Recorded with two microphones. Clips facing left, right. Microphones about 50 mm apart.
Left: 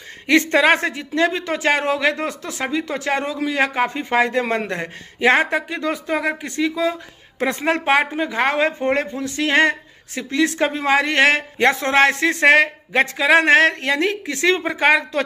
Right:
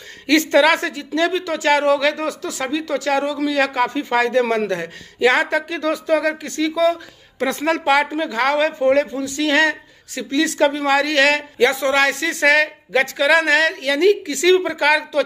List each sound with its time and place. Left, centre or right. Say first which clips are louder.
0.3 s speech: right 1 dB; left